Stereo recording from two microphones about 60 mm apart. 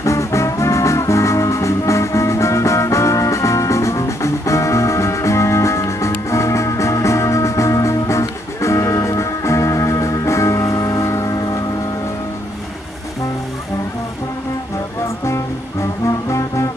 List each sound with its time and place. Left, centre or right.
0.0 s music: left
11.2 s music: left
16.3 s music: left